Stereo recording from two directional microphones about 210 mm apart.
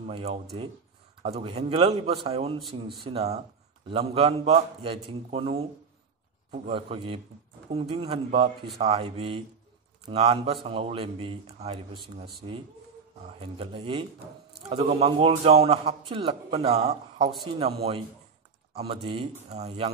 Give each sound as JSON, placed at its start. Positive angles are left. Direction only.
{"t": 0.0, "sound": "a man's voice", "side_deg": -30}
{"t": 13.4, "sound": "a man's voice", "side_deg": -25}